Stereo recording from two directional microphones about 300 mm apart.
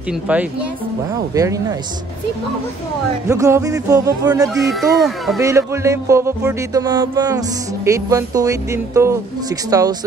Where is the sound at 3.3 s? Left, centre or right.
Centre.